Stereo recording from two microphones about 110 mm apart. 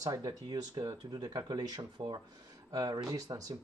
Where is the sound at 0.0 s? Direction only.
35° right (ahead or behind).